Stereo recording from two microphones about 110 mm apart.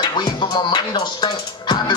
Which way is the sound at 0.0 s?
40° left (ahead or behind).